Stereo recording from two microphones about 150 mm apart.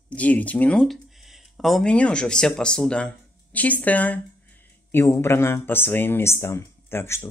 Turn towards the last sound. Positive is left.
turn(degrees=15)  # may be behind; listen again after turning